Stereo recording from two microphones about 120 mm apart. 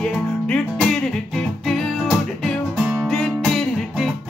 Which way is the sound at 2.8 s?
10° right (ahead or behind).